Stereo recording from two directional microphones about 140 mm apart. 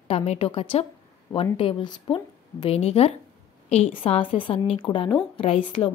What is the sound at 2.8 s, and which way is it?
A woman's voice, 50° left (ahead or behind).